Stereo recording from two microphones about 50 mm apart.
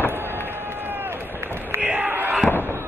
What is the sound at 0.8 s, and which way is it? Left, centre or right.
Rowboat, right.